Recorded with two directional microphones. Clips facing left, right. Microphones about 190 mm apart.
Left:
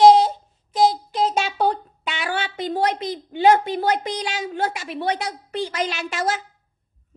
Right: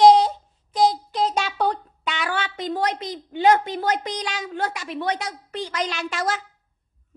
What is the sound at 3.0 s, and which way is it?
Speech, 10° left (ahead or behind).